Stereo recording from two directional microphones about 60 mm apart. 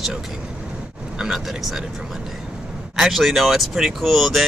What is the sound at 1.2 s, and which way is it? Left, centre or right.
Speech, centre.